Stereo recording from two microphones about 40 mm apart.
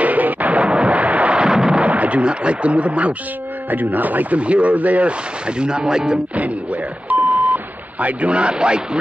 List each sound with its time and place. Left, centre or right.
0.0 s artillery fire: right
1.4 s artillery fire: centre
1.8 s speech: right
3.7 s speech: right
4.4 s speech: right
5.5 s speech: right
6.3 s speech: right